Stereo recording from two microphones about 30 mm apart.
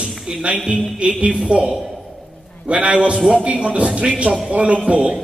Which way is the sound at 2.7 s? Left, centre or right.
Right.